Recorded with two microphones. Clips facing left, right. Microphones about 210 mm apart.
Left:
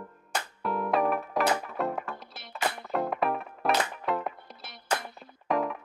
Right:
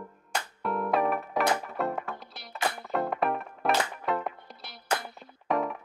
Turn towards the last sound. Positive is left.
turn(degrees=0)  # may be behind; listen again after turning